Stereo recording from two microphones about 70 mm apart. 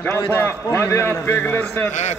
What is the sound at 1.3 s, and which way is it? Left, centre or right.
Speech, left.